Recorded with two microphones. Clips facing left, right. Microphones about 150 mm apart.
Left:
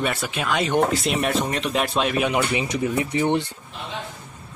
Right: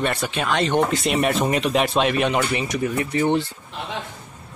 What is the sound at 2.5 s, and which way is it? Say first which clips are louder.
Speech: even; 15° left (ahead or behind).